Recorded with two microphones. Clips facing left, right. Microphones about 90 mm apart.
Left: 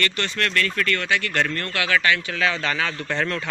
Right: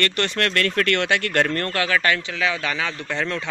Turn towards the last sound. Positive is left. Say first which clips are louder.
# left 1 dB
turn(degrees=-15)  # may be behind; listen again after turning